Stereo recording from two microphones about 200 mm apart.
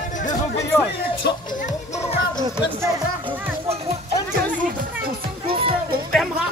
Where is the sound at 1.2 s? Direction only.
40° left (ahead or behind).